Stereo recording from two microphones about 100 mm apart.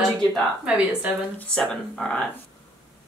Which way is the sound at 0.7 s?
15° right (ahead or behind).